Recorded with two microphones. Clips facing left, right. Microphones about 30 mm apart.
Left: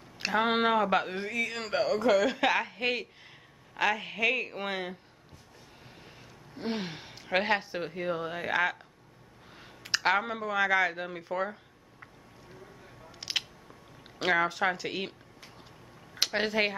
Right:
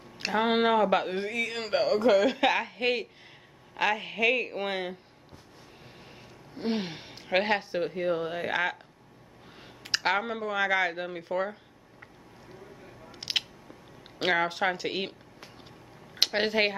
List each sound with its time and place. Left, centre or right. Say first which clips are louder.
0.2 s speech: right 1 dB; centre
6.5 s speech: right 3 dB; centre
13.1 s a sound: right 3 dB; right
14.1 s speech: even; centre
14.6 s a sound: right 1 dB; centre
16.3 s speech: right 2 dB; centre